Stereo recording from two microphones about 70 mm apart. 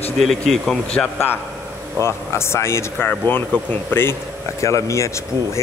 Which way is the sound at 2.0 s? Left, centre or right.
Left.